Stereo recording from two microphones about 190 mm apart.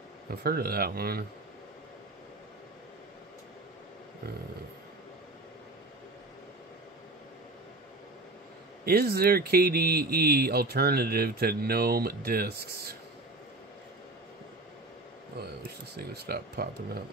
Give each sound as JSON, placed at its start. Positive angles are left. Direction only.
{"t": 0.3, "sound": "speech", "side_deg": -55}
{"t": 8.8, "sound": "speech", "side_deg": -55}
{"t": 16.0, "sound": "speech", "side_deg": -55}